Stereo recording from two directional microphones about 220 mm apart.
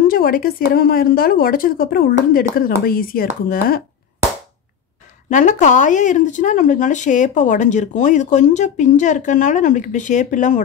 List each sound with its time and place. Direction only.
0.0 s speech: 40° left (ahead or behind)
5.3 s speech: 35° left (ahead or behind)